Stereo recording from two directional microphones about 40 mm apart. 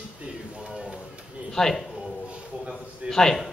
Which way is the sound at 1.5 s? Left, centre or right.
Centre.